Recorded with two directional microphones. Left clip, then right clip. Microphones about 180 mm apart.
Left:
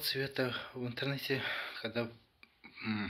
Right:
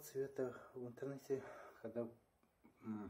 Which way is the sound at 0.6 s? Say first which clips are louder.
Left 11 dB; 15° left (ahead or behind).